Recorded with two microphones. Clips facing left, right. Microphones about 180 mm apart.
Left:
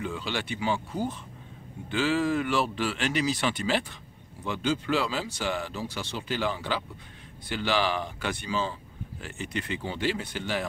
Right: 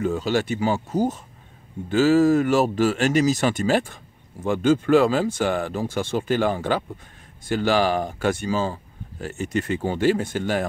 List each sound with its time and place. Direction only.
0.0 s speech: 45° right (ahead or behind)